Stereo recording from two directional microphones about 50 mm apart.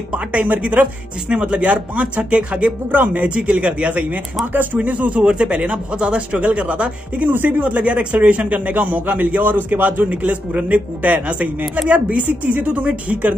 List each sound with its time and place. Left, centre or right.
0.3 s a man's voice: right
2.9 s a man's voice: right
3.3 s a man's voice: right